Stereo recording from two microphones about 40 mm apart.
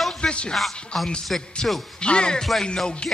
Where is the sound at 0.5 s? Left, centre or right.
Centre.